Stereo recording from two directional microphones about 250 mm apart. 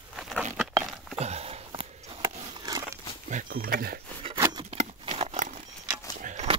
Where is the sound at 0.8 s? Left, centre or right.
Centre.